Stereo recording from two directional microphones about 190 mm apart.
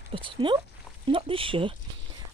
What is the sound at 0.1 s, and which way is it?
Speech, 25° right (ahead or behind).